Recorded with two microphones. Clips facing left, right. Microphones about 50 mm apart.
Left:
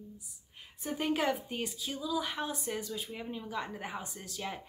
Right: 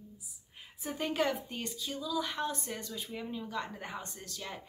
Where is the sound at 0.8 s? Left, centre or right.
Centre.